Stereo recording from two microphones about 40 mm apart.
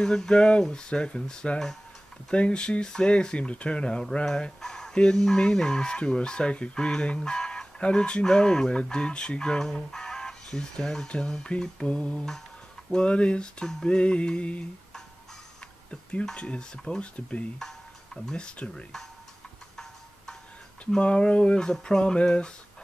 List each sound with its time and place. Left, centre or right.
0.0 s speech: centre
4.3 s speech: centre; by 14.7 s left
15.9 s speech: left
17.0 s speech: left
17.6 s tick-tock: centre
18.3 s speech: left
21.0 s speech: left